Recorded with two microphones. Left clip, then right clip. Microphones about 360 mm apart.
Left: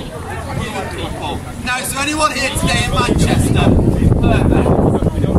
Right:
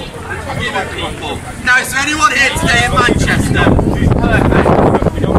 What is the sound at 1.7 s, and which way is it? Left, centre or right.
Speech, centre.